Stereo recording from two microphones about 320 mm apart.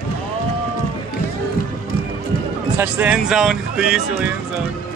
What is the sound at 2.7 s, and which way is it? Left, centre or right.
Speech, centre.